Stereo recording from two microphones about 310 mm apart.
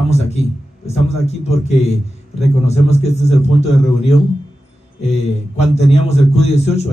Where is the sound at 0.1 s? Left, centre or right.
Centre.